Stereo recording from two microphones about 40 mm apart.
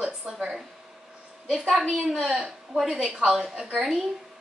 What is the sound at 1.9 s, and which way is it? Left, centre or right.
A woman's voice, centre.